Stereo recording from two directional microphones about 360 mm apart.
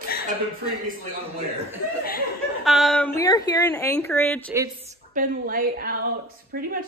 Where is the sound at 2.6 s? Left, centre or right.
Centre.